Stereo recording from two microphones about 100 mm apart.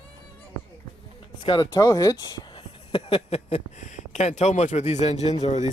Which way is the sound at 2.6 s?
70° left (ahead or behind).